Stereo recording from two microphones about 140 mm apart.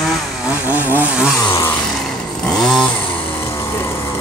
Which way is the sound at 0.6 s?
15° right (ahead or behind).